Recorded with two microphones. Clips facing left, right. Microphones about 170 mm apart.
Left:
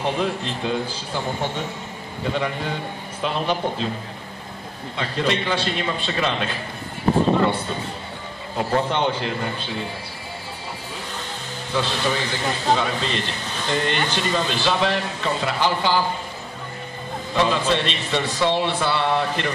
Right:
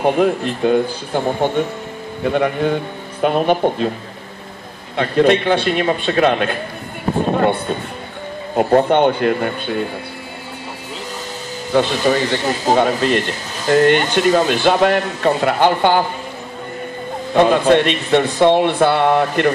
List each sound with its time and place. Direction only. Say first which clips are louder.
0.0 s speech: right 8 dB; 55° right (ahead or behind)
4.9 s speech: right 10 dB; 55° right (ahead or behind)
11.7 s speech: right 8 dB; 55° right (ahead or behind)
17.3 s speech: right 9 dB; 55° right (ahead or behind)